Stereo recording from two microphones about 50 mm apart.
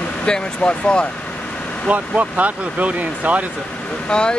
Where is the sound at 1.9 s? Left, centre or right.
Right.